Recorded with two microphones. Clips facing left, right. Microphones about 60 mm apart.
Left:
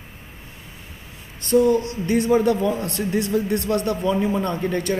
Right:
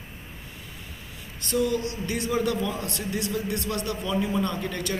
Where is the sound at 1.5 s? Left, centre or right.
Left.